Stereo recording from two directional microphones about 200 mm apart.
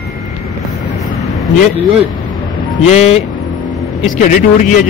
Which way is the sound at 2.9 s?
30° left (ahead or behind).